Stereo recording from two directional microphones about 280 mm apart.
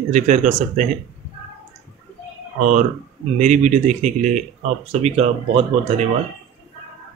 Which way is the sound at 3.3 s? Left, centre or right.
Right.